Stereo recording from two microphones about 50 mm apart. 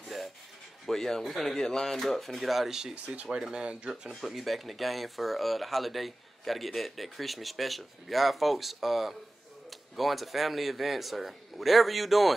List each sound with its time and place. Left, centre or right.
0.0 s rub: centre
0.8 s speech: centre
2.9 s speech: right
4.2 s speech: centre